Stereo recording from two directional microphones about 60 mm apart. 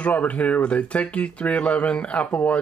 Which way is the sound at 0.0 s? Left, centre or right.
Left.